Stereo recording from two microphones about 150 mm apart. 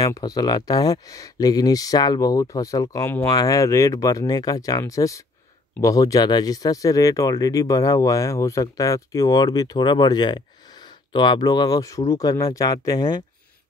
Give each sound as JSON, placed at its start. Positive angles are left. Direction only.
{"t": 0.0, "sound": "speech", "side_deg": 25}